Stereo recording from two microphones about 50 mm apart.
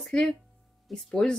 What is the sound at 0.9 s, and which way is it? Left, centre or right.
Speech, centre.